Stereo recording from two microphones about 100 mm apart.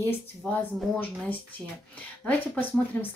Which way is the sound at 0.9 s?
20° left (ahead or behind).